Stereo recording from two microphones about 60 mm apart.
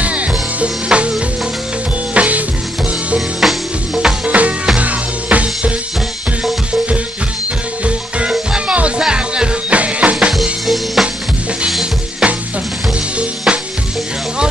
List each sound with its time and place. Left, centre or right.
0.0 s music: right
2.1 s music: right
3.2 s music: centre
4.3 s music: right
7.8 s music: centre
10.3 s music: centre
11.8 s music: centre
13.5 s frying: centre